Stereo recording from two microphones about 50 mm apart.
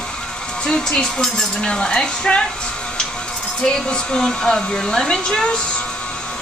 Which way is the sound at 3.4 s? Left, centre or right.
Centre.